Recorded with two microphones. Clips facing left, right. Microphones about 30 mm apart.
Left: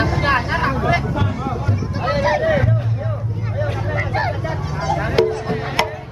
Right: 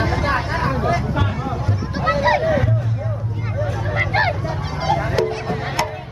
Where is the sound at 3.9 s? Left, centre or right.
Right.